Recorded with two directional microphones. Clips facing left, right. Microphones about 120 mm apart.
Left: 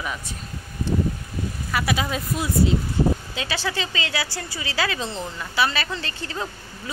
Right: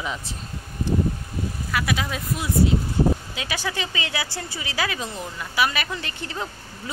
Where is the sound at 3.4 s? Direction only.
15° right (ahead or behind).